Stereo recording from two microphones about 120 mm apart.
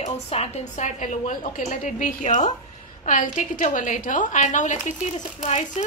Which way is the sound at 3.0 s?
90° left.